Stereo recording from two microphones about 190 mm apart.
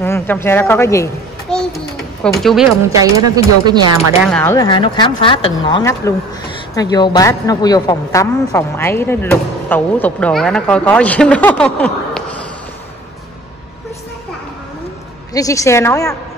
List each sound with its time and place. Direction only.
0.0 s a woman's voice: 10° left (ahead or behind)
1.5 s a sound: 5° left (ahead or behind)
2.2 s speech: centre (ahead or behind)
2.9 s speech: 20° right (ahead or behind)
4.2 s speech: 5° left (ahead or behind)
4.6 s a woman's voice: 25° left (ahead or behind); by 12.4 s 5° left (ahead or behind)
15.3 s a woman's voice: 15° left (ahead or behind)